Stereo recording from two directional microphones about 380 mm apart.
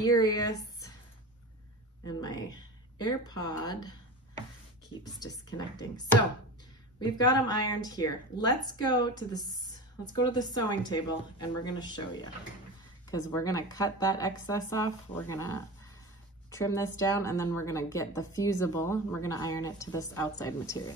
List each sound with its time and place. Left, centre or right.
0.0 s speech: centre
2.0 s speech: centre
5.2 s a woman's voice: centre
7.0 s a woman's voice: centre
10.1 s a woman's voice: centre
16.4 s a woman's voice: centre